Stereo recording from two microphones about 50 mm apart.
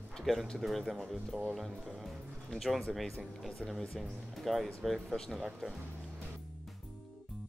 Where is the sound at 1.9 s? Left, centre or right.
Centre.